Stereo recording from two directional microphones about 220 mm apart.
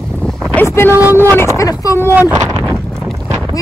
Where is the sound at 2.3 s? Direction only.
5° right (ahead or behind).